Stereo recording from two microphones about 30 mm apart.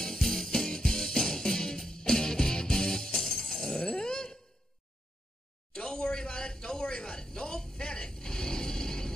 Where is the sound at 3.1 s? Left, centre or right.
Centre.